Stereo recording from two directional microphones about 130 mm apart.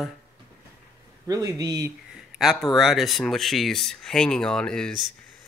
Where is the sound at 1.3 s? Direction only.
30° right (ahead or behind).